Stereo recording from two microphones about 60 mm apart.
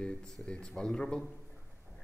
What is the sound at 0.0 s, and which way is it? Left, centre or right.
Speech, centre.